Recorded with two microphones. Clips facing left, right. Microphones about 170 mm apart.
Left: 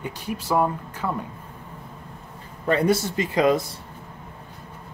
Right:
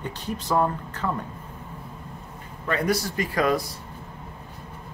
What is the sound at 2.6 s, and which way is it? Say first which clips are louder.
A man's voice: left 4 dB; 30° left (ahead or behind).